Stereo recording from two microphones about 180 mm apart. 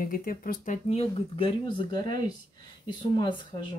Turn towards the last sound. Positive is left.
turn(degrees=25)  # may be behind; listen again after turning